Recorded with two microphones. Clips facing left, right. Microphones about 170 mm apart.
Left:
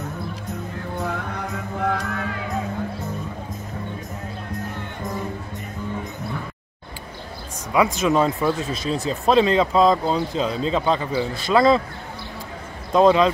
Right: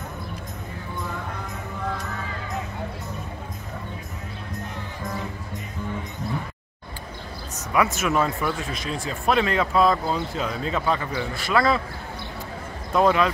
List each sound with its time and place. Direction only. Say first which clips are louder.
0.9 s music: left 5 dB; 70° left (ahead or behind)
7.7 s a man's voice: left 3 dB; 20° left (ahead or behind)
12.9 s a man's voice: left 4 dB; 25° left (ahead or behind)